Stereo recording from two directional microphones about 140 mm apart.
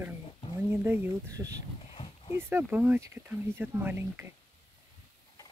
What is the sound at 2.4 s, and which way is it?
Speech, 15° right (ahead or behind).